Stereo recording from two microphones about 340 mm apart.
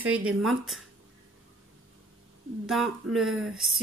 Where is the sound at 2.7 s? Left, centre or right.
Centre.